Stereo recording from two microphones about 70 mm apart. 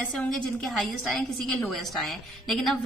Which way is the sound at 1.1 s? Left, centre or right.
Centre.